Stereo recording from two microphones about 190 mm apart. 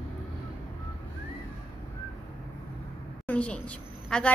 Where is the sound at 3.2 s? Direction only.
5° left (ahead or behind).